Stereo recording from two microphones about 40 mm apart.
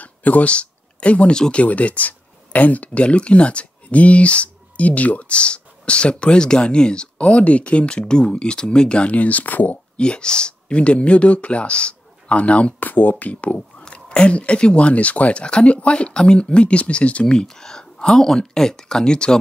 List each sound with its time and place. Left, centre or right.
0.0 s a sound: left
1.5 s speech: left
9.1 s speech: left
9.9 s speech: left
12.8 s speech: left
13.3 s speech: left
13.8 s speech: left